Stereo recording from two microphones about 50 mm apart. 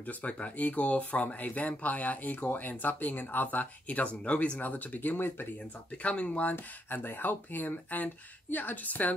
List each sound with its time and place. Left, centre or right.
0.0 s speech: left
4.6 s speech: left
6.0 s speech: left
6.5 s speech: left